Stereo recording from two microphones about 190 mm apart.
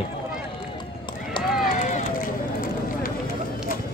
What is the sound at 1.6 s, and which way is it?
Run, 45° left (ahead or behind).